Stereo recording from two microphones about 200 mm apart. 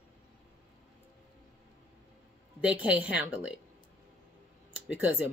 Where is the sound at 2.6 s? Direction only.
5° right (ahead or behind).